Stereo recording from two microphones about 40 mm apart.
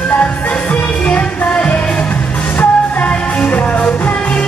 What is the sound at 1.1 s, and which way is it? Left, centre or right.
Music, left.